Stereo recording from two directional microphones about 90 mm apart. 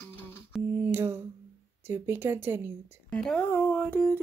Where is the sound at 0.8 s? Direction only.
25° right (ahead or behind).